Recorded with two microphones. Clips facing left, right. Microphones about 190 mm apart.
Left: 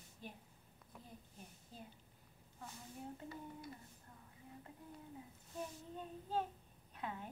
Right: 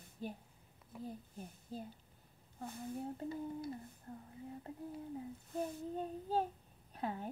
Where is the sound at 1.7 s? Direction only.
35° right (ahead or behind).